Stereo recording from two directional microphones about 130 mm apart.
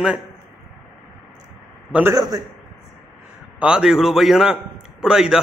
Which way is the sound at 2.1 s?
25° right (ahead or behind).